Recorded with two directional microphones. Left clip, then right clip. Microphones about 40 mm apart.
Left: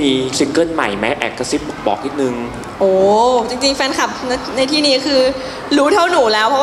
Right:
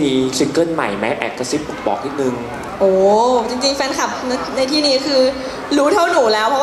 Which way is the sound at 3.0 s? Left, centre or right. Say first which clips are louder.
Left 2 dB; right.